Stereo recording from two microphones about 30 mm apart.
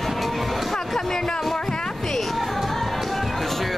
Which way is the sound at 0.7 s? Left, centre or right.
Centre.